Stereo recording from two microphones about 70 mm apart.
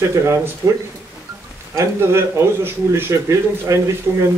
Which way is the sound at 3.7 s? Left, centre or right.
Right.